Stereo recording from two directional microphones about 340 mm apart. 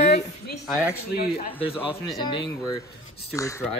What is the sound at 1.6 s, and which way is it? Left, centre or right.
Speech, centre.